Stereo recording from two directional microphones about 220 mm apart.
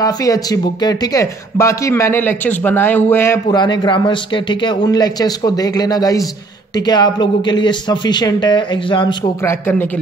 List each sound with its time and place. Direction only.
0.0 s speech: 15° left (ahead or behind)